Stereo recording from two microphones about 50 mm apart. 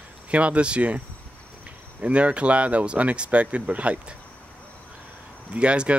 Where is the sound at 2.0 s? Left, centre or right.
Right.